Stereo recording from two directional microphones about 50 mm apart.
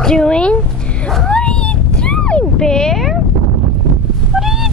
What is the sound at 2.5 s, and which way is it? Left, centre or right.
Speech, centre.